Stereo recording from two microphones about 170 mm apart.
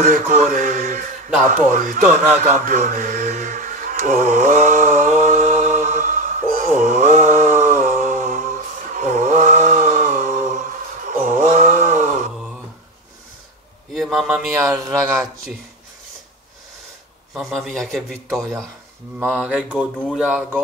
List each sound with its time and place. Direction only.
0.0 s speech: 45° right (ahead or behind)
1.4 s a sound: 50° right (ahead or behind)
13.9 s a sound: 5° right (ahead or behind)
14.5 s mantra: 20° right (ahead or behind)
17.3 s a man's voice: centre (ahead or behind)
19.1 s mantra: 10° right (ahead or behind)
20.0 s a man's voice: centre (ahead or behind)